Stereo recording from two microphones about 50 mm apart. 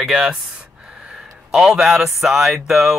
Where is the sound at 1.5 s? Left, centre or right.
Centre.